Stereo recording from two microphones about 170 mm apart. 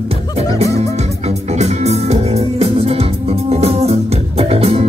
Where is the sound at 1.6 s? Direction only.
40° right (ahead or behind).